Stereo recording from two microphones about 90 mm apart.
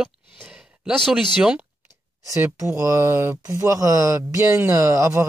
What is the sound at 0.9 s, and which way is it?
Speech, 5° left (ahead or behind).